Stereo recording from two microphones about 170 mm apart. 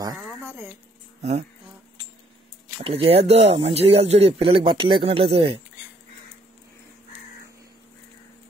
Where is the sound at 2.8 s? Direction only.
35° right (ahead or behind).